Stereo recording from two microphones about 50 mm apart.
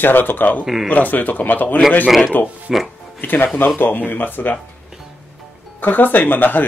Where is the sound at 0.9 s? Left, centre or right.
Left.